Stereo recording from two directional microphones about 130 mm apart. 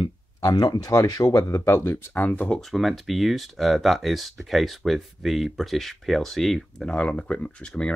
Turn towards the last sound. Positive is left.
turn(degrees=5)  # may be behind; listen again after turning